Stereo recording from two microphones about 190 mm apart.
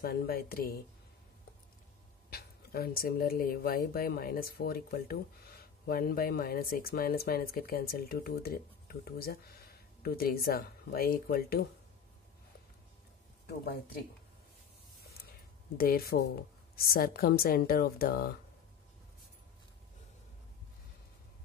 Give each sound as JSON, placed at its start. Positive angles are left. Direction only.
{"t": 0.0, "sound": "speech", "side_deg": 55}
{"t": 2.3, "sound": "speech", "side_deg": 55}
{"t": 15.8, "sound": "speech", "side_deg": 50}